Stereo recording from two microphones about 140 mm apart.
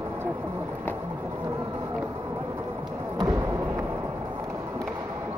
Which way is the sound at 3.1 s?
30° right (ahead or behind).